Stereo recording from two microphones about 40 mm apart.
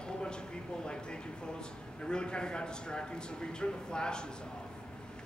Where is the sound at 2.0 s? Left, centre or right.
Left.